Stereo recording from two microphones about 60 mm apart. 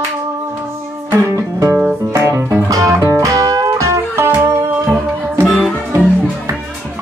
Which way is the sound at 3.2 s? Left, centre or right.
Right.